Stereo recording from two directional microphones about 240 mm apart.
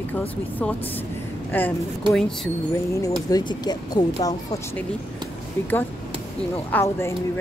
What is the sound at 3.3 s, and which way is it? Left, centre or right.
A woman's voice, centre.